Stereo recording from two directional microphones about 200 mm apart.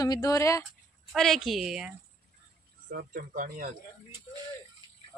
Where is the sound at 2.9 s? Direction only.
45° right (ahead or behind).